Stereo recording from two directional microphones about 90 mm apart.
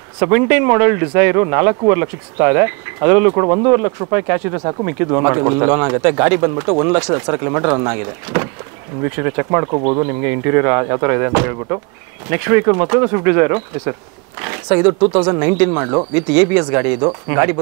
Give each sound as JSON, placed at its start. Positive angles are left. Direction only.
{"t": 0.2, "sound": "speech", "side_deg": -20}
{"t": 6.5, "sound": "speech", "side_deg": -35}
{"t": 6.8, "sound": "speech", "side_deg": -20}
{"t": 16.2, "sound": "speech", "side_deg": -15}